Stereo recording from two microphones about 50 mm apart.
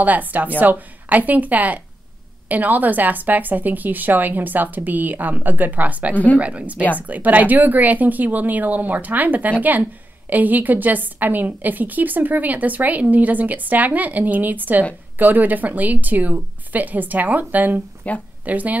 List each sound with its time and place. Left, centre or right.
0.0 s a woman's voice: right
18.1 s speech: left
18.4 s speech: right